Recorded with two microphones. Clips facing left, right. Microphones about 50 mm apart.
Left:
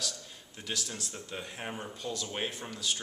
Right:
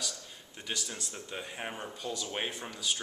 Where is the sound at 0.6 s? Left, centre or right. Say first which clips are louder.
Left 1 dB; centre.